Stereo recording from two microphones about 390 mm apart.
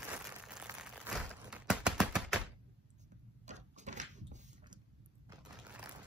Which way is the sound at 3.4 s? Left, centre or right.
Centre.